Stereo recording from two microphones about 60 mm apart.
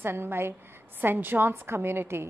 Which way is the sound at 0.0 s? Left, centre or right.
Right.